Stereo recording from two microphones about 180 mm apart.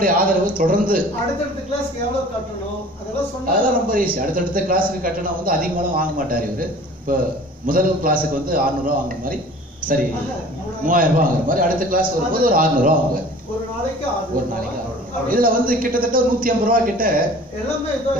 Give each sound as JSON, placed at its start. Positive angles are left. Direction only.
{"t": 0.0, "sound": "a man's voice", "side_deg": -50}
{"t": 3.6, "sound": "a man's voice", "side_deg": -50}
{"t": 15.2, "sound": "a man's voice", "side_deg": -50}